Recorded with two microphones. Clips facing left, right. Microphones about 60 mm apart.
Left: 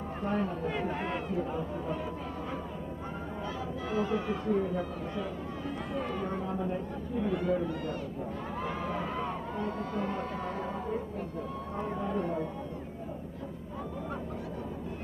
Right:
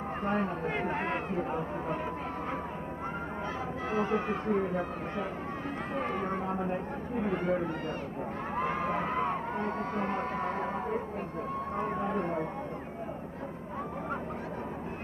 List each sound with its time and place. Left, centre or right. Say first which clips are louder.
0.2 s speech: even; right
3.4 s speech: even; right
8.5 s a sound: right 5 dB; right
11.7 s speech: right 1 dB; right